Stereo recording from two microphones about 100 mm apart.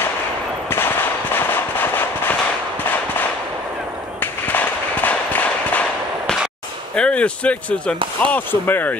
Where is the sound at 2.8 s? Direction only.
20° left (ahead or behind).